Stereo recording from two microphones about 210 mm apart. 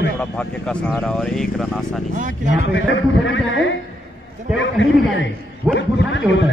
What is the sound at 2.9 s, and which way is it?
A man's voice, 60° left (ahead or behind).